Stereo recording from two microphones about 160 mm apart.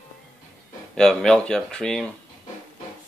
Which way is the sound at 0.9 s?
5° left (ahead or behind).